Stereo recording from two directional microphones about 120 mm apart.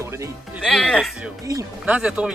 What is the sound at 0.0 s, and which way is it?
Music, 25° right (ahead or behind).